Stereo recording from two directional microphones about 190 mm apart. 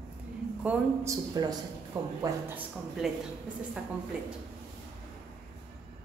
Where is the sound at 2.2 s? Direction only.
10° right (ahead or behind).